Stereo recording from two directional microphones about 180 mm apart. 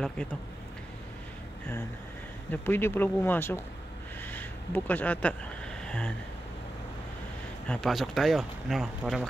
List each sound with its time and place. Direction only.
2.5 s speech: 10° left (ahead or behind)
5.9 s a sound: 5° left (ahead or behind)
7.6 s speech: 5° left (ahead or behind)